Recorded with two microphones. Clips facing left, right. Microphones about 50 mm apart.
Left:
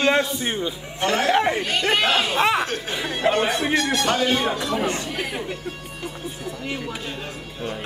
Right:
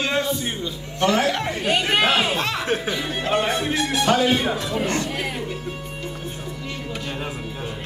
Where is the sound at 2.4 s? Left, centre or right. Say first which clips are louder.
Left 6 dB; left.